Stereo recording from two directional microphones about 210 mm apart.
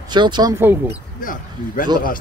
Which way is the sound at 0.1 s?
20° right (ahead or behind).